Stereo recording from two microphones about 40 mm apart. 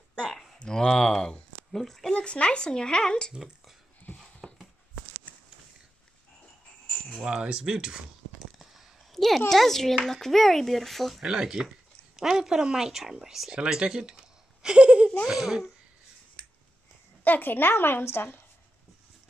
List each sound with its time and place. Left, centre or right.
0.3 s a sound: centre
0.6 s speech: centre
2.0 s speech: left
4.4 s a sound: centre
7.2 s speech: right
9.1 s a sound: centre
9.5 s speech: centre
11.2 s a woman's voice: centre
15.2 s a woman's voice: centre
17.2 s a woman's voice: left